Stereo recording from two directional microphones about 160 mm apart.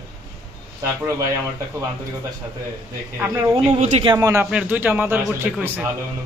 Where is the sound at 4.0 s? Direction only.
25° right (ahead or behind).